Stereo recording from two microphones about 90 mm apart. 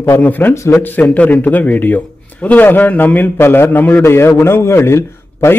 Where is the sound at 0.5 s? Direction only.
35° left (ahead or behind).